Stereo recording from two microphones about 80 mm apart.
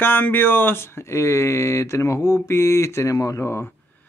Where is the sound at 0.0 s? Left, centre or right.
Left.